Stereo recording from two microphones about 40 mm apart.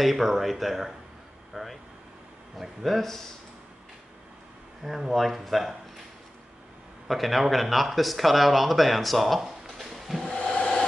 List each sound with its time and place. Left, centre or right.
0.0 s speech: centre
1.5 s vehicle: centre
2.5 s speech: centre
4.8 s speech: centre
7.1 s speech: centre
9.4 s a sound: centre
10.3 s a sound: centre